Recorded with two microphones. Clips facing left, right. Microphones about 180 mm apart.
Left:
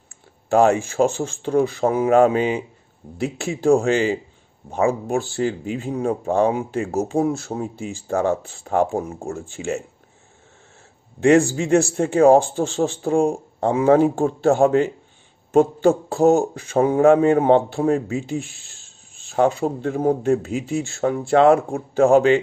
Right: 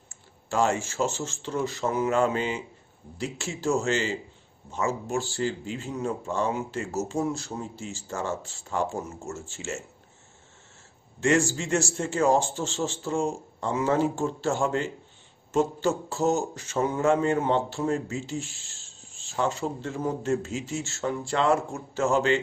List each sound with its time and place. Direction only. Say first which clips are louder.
0.5 s a man's voice: left 9 dB; 60° left (ahead or behind)
11.1 s a man's voice: left 8 dB; 60° left (ahead or behind)